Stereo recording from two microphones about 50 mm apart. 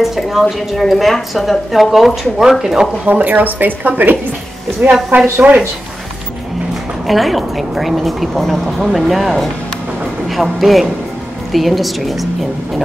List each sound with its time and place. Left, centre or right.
0.0 s a woman's voice: centre
3.1 s a woman's voice: right
7.1 s a woman's voice: centre